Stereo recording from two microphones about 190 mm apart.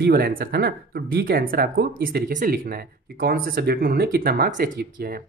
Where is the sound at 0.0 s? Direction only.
50° right (ahead or behind).